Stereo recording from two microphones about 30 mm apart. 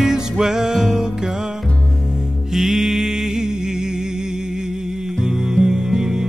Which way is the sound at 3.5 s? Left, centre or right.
Right.